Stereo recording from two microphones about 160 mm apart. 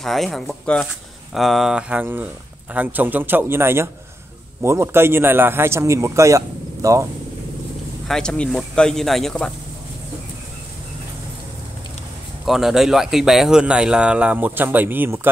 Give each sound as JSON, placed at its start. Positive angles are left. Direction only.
{"t": 0.0, "sound": "a man's voice", "side_deg": 0}
{"t": 8.1, "sound": "speech", "side_deg": 5}
{"t": 12.4, "sound": "speech", "side_deg": 0}